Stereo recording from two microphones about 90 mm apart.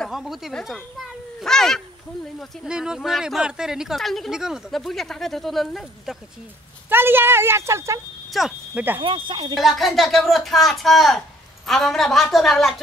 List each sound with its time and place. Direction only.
0.1 s a child's voice: 5° right (ahead or behind)
2.6 s speech: 5° right (ahead or behind)
6.9 s speech: 25° right (ahead or behind)
8.3 s speech: centre (ahead or behind)
8.7 s speech: 20° right (ahead or behind)
9.0 s speech: 70° right (ahead or behind)
9.6 s speech: centre (ahead or behind)